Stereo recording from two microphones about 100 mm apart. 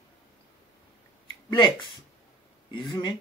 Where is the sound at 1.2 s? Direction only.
55° left (ahead or behind).